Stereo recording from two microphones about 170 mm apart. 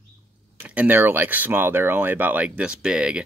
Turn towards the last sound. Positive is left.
turn(degrees=-5)  # may be behind; listen again after turning